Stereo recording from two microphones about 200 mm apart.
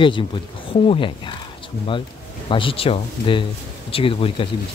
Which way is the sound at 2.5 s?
25° left (ahead or behind).